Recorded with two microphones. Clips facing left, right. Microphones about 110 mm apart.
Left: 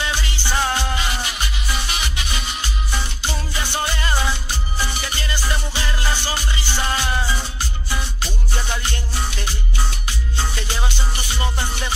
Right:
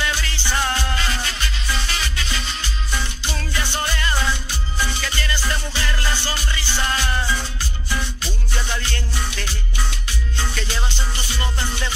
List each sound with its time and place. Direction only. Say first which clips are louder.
0.0 s music: even; 20° left (ahead or behind)
8.6 s music: left 1 dB; 20° left (ahead or behind)